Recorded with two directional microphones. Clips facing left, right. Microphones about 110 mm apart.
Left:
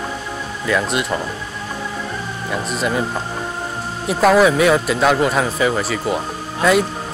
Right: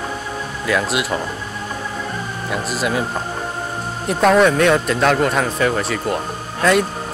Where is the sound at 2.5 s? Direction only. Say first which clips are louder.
Even; centre (ahead or behind).